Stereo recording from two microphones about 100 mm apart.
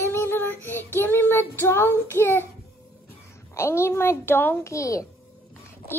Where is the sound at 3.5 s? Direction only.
25° left (ahead or behind).